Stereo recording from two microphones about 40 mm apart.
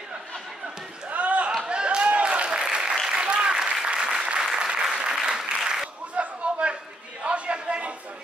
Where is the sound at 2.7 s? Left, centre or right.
Right.